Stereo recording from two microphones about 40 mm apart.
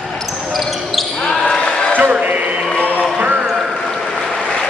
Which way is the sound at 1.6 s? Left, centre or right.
Left.